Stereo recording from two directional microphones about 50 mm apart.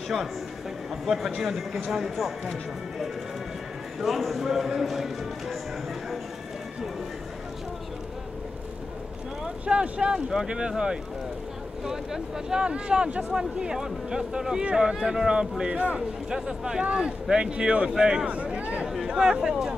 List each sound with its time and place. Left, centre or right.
1.0 s a man's voice: centre
4.0 s a man's voice: centre
9.7 s speech: right
11.8 s speech: centre
16.3 s speech: centre
19.0 s speech: centre